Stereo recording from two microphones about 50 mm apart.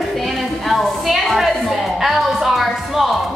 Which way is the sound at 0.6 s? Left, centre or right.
Centre.